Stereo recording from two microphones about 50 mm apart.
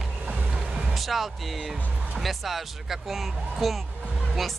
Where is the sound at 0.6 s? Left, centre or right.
Centre.